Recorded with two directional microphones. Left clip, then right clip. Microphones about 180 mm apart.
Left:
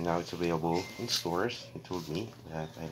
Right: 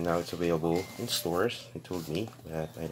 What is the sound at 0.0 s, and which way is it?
Speech, 20° right (ahead or behind).